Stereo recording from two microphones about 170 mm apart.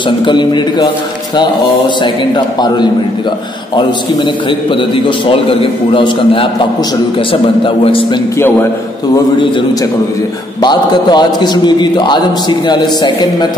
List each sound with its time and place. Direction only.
0.2 s a man's voice: 25° left (ahead or behind)
2.3 s a man's voice: 25° left (ahead or behind)
8.4 s a man's voice: 10° left (ahead or behind)
10.6 s a man's voice: 25° left (ahead or behind)